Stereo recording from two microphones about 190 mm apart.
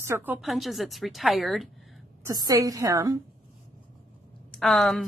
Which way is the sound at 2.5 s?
20° right (ahead or behind).